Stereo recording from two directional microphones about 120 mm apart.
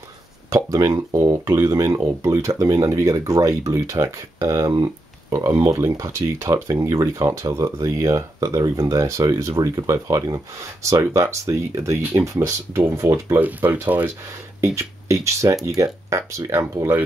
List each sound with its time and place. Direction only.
0.5 s speech: 25° right (ahead or behind)